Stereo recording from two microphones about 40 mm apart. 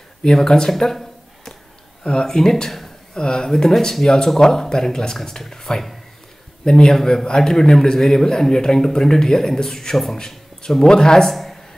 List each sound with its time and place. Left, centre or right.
0.2 s a man's voice: centre
3.2 s a man's voice: centre